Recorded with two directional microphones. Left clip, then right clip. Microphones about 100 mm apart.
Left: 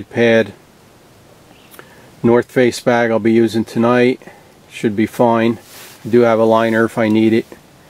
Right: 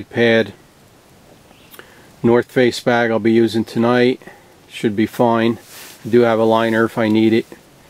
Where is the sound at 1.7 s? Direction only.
20° right (ahead or behind).